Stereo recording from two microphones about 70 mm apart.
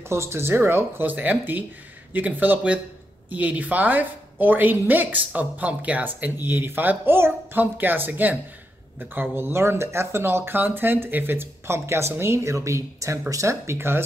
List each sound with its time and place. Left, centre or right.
0.1 s a woman's voice: right
6.4 s a woman's voice: right
12.5 s speech: right